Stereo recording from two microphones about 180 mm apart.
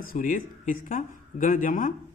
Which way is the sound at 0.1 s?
50° left (ahead or behind).